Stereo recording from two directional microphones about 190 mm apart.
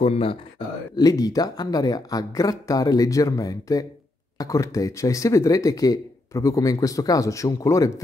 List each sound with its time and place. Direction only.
0.0 s speech: 30° left (ahead or behind)
0.9 s speech: 20° left (ahead or behind)